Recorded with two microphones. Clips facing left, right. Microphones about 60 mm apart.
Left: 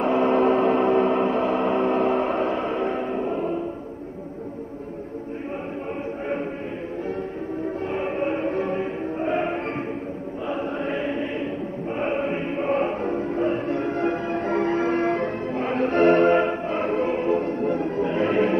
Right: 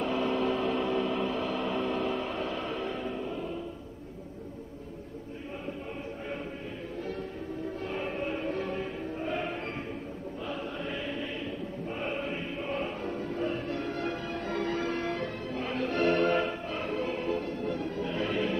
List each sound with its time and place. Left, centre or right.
0.0 s vehicle: left
7.6 s choir: left
12.0 s music: left